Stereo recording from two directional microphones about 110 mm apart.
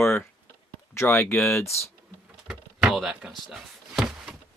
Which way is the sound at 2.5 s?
5° right (ahead or behind).